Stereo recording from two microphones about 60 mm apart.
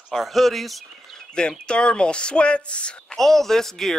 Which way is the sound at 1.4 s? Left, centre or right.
Centre.